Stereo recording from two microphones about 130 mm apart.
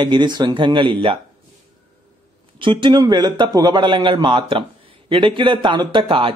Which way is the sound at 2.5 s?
40° right (ahead or behind).